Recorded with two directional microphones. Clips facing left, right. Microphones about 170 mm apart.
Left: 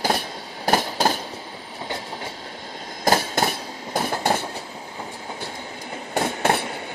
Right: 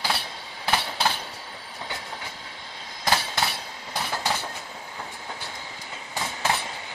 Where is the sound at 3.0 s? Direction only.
45° left (ahead or behind).